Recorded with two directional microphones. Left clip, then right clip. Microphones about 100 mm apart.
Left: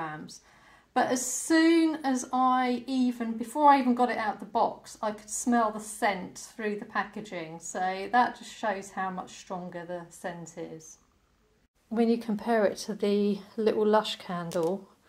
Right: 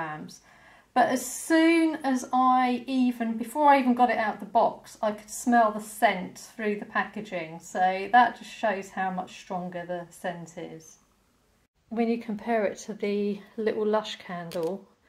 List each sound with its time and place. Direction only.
0.9 s a woman's voice: 5° left (ahead or behind)
11.9 s speech: 25° left (ahead or behind)